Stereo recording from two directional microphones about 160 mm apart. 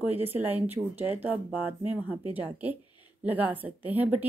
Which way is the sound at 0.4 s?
10° right (ahead or behind).